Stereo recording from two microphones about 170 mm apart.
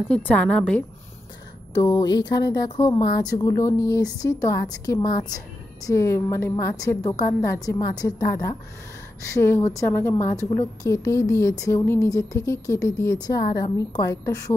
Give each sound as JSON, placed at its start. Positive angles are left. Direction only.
{"t": 0.1, "sound": "speech", "side_deg": 5}
{"t": 1.7, "sound": "speech", "side_deg": 20}